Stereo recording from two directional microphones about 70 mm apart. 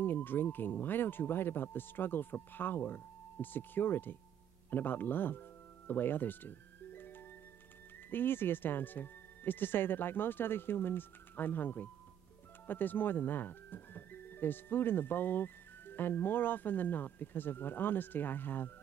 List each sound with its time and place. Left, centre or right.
0.0 s speech: left
4.6 s music: left
8.1 s speech: left